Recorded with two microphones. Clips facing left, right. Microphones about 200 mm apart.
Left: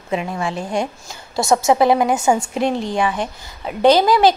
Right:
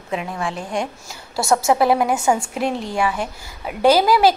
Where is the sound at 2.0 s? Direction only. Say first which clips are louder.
Left 2 dB; 20° left (ahead or behind).